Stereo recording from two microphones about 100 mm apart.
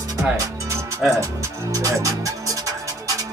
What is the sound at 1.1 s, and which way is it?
Speech, 30° right (ahead or behind).